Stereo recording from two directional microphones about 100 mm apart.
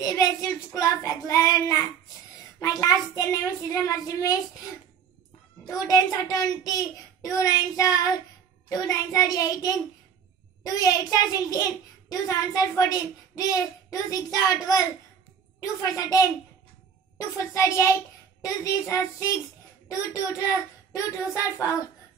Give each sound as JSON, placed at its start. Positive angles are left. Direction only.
{"t": 0.0, "sound": "a child's voice", "side_deg": 35}
{"t": 5.7, "sound": "a child's voice", "side_deg": 35}
{"t": 17.4, "sound": "a child's voice", "side_deg": 30}